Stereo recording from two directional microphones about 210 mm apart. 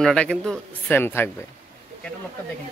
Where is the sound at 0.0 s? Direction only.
5° left (ahead or behind).